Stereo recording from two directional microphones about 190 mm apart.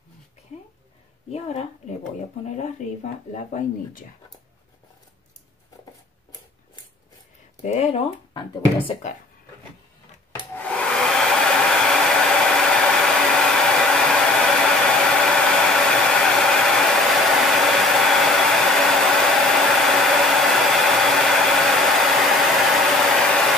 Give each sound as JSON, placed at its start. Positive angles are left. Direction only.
{"t": 1.3, "sound": "speech", "side_deg": 35}
{"t": 7.6, "sound": "speech", "side_deg": 35}
{"t": 10.5, "sound": "hair dryer", "side_deg": 5}